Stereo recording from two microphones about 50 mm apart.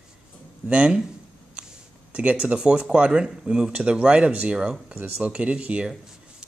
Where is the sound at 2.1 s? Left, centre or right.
Right.